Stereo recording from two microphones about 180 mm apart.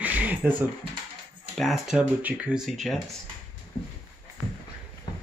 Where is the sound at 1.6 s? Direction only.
Centre (ahead or behind).